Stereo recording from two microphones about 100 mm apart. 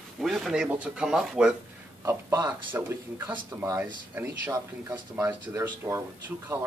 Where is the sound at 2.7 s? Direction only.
20° right (ahead or behind).